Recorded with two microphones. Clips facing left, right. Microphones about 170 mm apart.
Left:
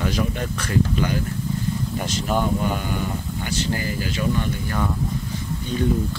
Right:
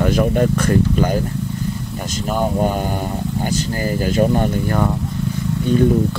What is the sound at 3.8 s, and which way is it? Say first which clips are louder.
Speech: right 8 dB; 45° right (ahead or behind).